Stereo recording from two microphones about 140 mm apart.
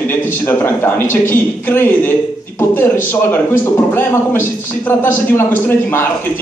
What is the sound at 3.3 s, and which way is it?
A man's voice, 15° left (ahead or behind).